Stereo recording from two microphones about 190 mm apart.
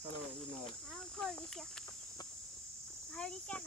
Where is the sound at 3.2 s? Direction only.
5° left (ahead or behind).